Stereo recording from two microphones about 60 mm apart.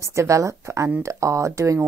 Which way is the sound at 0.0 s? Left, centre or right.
Right.